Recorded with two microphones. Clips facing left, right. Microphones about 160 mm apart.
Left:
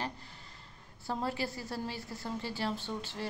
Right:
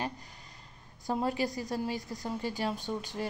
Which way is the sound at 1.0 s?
15° right (ahead or behind).